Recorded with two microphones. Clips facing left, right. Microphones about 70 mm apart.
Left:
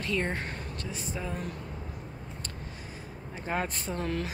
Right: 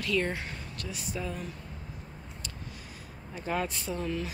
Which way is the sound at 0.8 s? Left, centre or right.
Left.